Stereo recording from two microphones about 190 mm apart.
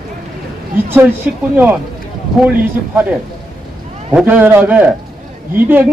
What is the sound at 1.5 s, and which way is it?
Speech, 10° right (ahead or behind).